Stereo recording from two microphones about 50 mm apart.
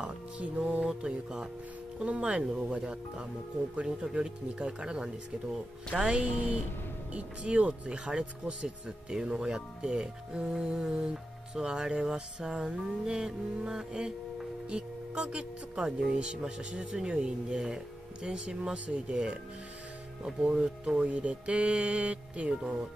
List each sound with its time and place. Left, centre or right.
0.0 s music: right
0.8 s music: centre
2.0 s speech: right
8.6 s music: centre
14.7 s speech: right
20.4 s speech: right
22.6 s music: centre